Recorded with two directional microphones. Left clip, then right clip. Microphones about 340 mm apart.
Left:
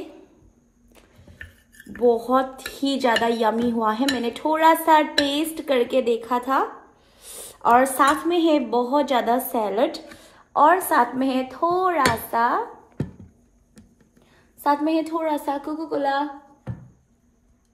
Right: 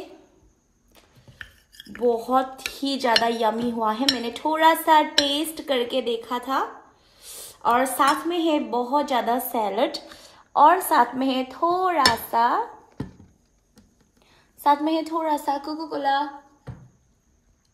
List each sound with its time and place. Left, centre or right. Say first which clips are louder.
2.0 s dishes: left 2 dB; centre
8.1 s dishes: left 3 dB; centre
14.6 s dishes: even; centre